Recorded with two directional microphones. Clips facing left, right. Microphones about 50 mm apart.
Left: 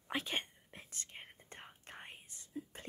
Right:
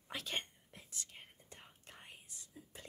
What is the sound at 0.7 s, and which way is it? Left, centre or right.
Whispering, left.